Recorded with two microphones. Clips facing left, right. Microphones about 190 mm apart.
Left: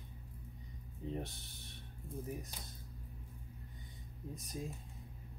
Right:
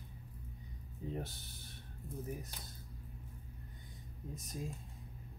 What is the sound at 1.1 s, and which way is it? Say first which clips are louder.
Speech: left 1 dB; centre (ahead or behind).